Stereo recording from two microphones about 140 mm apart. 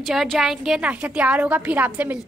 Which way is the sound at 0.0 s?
Centre (ahead or behind).